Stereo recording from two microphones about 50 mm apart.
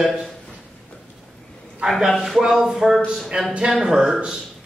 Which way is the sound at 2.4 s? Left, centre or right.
Centre.